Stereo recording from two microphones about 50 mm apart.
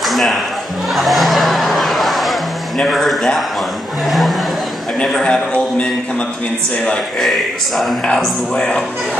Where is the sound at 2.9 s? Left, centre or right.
Centre.